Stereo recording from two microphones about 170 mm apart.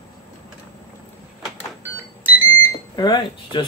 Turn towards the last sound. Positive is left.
turn(degrees=25)  # may be behind; listen again after turning